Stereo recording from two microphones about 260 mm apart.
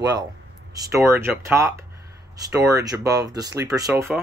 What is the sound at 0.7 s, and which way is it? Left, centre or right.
Speech, centre.